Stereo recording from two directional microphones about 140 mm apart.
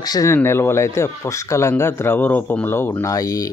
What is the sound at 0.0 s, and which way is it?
Speech, 30° left (ahead or behind).